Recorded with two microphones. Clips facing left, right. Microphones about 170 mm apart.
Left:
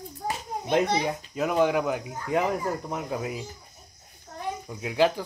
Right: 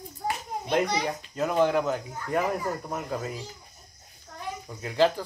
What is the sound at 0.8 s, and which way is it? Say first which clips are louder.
Speech: left 2 dB; 25° left (ahead or behind).